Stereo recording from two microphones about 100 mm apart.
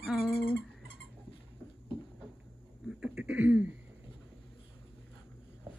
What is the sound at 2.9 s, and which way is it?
Cough, 10° right (ahead or behind).